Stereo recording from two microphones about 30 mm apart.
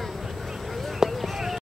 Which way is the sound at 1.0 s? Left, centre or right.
Centre.